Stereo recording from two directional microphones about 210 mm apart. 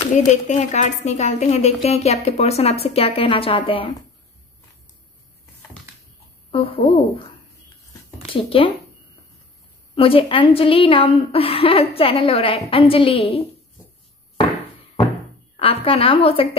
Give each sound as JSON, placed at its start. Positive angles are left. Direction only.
{"t": 0.3, "sound": "a woman's voice", "side_deg": 35}
{"t": 6.5, "sound": "a woman's voice", "side_deg": 30}
{"t": 7.8, "sound": "a sound", "side_deg": 25}
{"t": 9.9, "sound": "a woman's voice", "side_deg": 25}
{"t": 15.5, "sound": "a woman's voice", "side_deg": 30}